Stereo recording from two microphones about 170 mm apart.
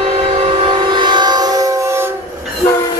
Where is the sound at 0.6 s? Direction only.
30° right (ahead or behind).